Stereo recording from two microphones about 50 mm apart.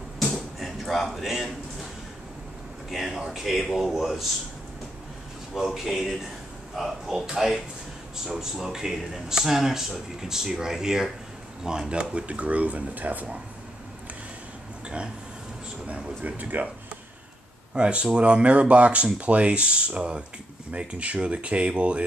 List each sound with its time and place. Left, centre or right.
0.2 s a sound: centre
2.9 s speech: centre
5.5 s speech: centre; by 13.4 s right
16.2 s speech: right
17.7 s speech: right